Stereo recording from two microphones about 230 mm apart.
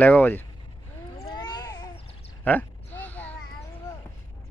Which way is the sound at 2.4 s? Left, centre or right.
Centre.